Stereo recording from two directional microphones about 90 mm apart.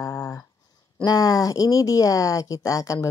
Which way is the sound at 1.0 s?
45° left (ahead or behind).